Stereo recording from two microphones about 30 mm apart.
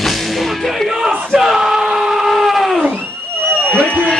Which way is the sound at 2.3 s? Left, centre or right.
Centre.